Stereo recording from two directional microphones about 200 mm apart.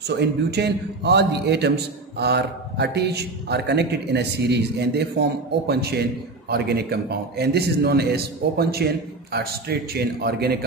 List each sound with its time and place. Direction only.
0.1 s a man's voice: 55° right (ahead or behind)